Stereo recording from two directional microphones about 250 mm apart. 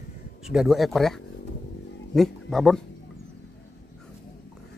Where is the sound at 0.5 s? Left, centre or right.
Centre.